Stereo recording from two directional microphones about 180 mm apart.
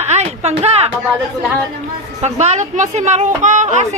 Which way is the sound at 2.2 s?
40° right (ahead or behind).